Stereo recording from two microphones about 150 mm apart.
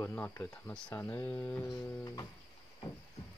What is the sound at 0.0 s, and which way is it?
Speech, 15° left (ahead or behind).